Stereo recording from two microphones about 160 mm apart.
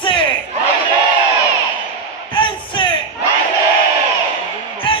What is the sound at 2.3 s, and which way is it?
Crowd, 30° left (ahead or behind).